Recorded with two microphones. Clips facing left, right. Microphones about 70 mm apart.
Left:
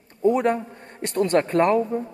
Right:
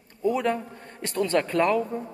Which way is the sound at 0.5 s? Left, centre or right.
Left.